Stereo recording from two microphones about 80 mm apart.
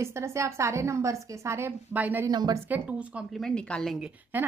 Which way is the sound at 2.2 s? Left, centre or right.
Right.